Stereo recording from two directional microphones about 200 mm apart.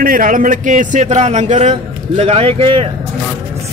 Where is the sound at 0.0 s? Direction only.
45° right (ahead or behind).